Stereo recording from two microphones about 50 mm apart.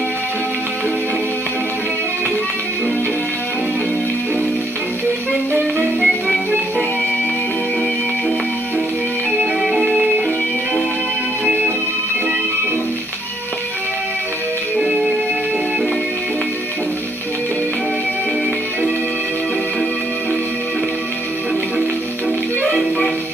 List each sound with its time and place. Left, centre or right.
5.9 s music: centre
9.6 s music: centre
11.4 s music: right
14.8 s music: centre